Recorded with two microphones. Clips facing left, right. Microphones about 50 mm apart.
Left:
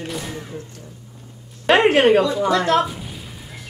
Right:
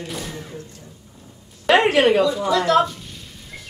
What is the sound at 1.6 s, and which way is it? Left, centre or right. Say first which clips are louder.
A woman's voice: left 1 dB; left.